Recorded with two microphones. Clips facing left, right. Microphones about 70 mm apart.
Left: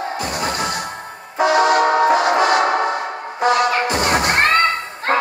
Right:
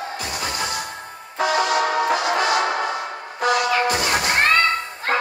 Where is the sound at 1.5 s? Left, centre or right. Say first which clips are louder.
Left 6 dB; left.